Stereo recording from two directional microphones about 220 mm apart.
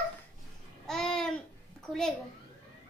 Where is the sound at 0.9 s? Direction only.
5° left (ahead or behind).